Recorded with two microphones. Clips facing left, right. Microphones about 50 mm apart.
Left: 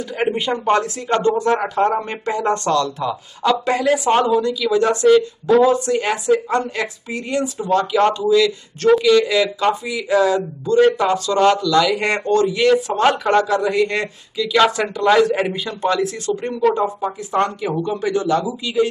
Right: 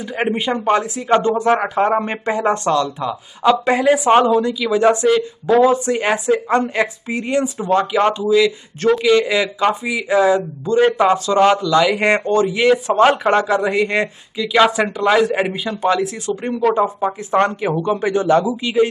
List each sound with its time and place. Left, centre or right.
0.2 s speech: centre
17.3 s speech: right